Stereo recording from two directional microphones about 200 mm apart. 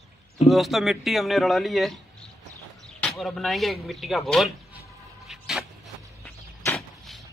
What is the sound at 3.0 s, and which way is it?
A man's voice, centre (ahead or behind).